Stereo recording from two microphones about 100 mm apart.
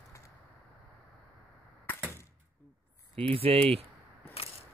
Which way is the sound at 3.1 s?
75° right (ahead or behind).